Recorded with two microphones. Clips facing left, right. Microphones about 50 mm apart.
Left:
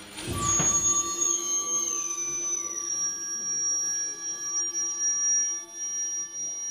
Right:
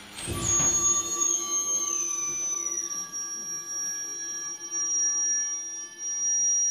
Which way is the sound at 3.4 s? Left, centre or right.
Right.